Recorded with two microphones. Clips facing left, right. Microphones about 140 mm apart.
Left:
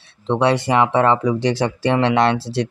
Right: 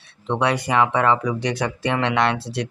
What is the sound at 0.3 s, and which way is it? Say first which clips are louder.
Speech: left 4 dB; 30° left (ahead or behind).